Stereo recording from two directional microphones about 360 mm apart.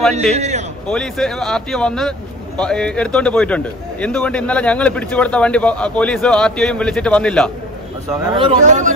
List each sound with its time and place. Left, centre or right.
0.4 s a man's voice: centre
0.8 s a man's voice: centre
8.1 s speech: centre